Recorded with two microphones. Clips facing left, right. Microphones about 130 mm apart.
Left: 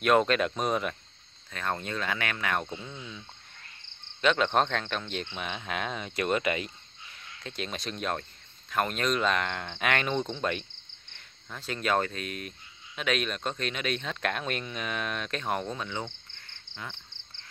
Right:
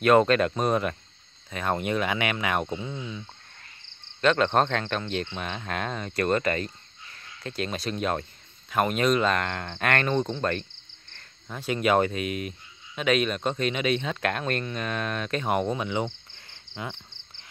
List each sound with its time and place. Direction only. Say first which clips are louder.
0.0 s cricket: right 4 dB; centre (ahead or behind)
1.5 s speech: right 6 dB; 10° right (ahead or behind)
4.2 s cricket: right 3 dB; centre (ahead or behind)
11.4 s cricket: right 6 dB; 10° right (ahead or behind)
15.6 s speech: right 7 dB; 10° right (ahead or behind)
16.3 s frog: right 6 dB; 25° right (ahead or behind)